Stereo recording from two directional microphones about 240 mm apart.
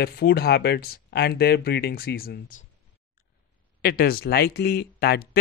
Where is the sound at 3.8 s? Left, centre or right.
Left.